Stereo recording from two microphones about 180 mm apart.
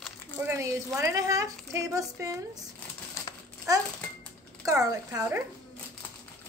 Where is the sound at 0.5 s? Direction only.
15° right (ahead or behind).